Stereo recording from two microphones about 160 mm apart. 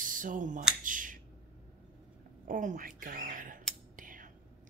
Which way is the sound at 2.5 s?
55° right (ahead or behind).